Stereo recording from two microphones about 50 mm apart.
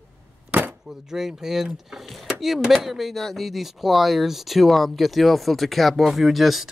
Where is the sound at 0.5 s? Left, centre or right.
Right.